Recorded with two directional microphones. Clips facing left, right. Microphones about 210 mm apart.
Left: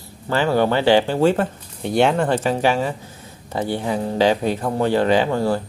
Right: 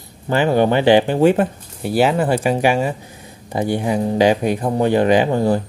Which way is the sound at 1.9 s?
5° right (ahead or behind).